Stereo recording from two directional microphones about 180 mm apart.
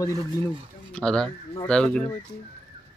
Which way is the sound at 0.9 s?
5° left (ahead or behind).